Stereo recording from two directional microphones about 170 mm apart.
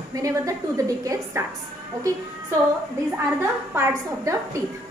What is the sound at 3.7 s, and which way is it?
Speech, 15° right (ahead or behind).